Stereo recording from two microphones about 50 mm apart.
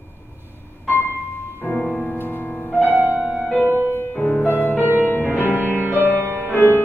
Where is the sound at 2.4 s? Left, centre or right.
Left.